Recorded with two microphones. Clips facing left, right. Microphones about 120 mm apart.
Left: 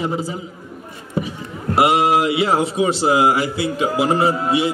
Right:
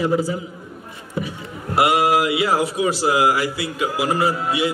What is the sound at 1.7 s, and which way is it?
A man's voice, 25° left (ahead or behind).